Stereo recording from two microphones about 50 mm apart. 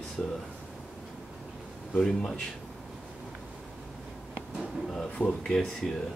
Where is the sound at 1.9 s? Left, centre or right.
Centre.